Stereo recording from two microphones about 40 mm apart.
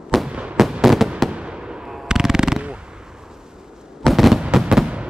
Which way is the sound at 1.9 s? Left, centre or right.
Centre.